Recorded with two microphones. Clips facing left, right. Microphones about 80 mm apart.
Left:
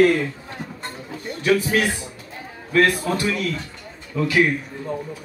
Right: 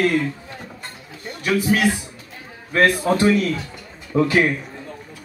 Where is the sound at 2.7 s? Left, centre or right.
Right.